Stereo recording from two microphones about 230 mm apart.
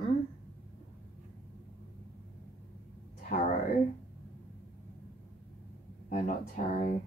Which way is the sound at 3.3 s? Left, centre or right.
Left.